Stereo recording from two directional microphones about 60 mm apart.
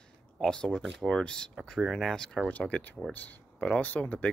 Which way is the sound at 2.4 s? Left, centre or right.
Left.